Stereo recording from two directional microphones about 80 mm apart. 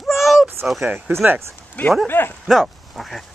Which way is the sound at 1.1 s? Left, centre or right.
Right.